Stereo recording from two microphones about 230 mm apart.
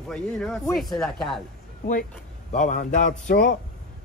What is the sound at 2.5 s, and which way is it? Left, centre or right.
A man's voice, left.